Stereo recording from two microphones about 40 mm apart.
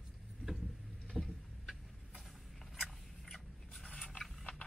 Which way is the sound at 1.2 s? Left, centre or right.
Centre.